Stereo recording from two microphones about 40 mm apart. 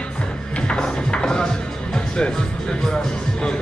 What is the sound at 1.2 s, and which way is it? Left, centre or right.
Music, centre.